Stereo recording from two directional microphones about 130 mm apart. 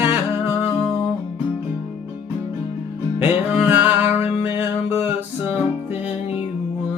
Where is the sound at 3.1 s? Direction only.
15° right (ahead or behind).